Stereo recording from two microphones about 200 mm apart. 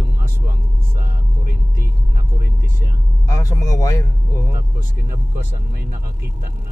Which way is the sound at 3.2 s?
20° left (ahead or behind).